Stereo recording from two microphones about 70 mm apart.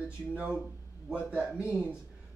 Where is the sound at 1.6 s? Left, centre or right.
Centre.